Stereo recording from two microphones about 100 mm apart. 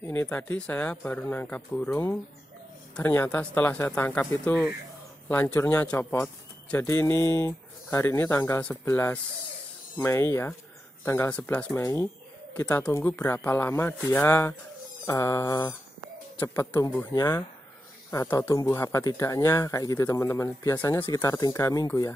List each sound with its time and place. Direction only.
0.0 s speech: 20° left (ahead or behind)
3.0 s speech: 20° left (ahead or behind)
5.3 s speech: 15° left (ahead or behind)
11.7 s speech: 30° left (ahead or behind)
12.5 s speech: 15° left (ahead or behind)
15.0 s speech: 30° left (ahead or behind)
16.3 s speech: 20° left (ahead or behind)
18.7 s speech: 30° left (ahead or behind)